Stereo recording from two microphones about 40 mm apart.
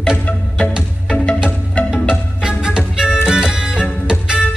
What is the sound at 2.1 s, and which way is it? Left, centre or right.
Music, centre.